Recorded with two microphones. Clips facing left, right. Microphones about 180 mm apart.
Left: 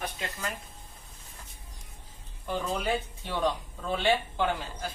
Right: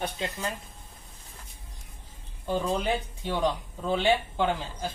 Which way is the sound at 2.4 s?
20° right (ahead or behind).